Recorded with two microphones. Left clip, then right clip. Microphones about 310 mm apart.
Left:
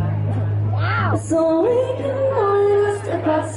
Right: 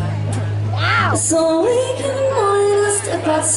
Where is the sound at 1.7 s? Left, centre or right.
Centre.